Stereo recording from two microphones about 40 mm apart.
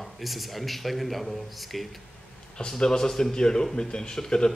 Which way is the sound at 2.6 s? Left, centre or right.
Centre.